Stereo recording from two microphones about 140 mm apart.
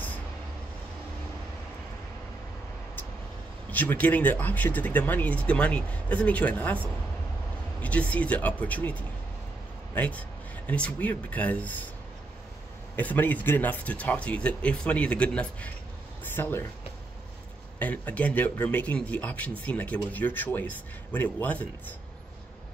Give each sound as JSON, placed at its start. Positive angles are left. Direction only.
{"t": 3.7, "sound": "speech", "side_deg": 10}
{"t": 12.9, "sound": "speech", "side_deg": 10}
{"t": 17.7, "sound": "speech", "side_deg": 10}